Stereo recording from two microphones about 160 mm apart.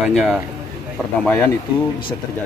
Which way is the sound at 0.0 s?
Centre (ahead or behind).